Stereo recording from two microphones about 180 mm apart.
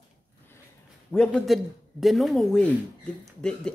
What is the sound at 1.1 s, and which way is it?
A man's voice, 5° left (ahead or behind).